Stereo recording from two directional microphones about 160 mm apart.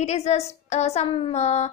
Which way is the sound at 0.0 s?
45° left (ahead or behind).